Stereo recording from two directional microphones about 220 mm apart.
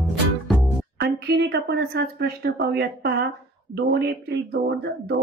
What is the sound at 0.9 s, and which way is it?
A woman's voice, 45° right (ahead or behind).